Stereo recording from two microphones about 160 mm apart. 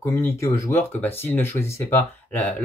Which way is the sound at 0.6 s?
15° left (ahead or behind).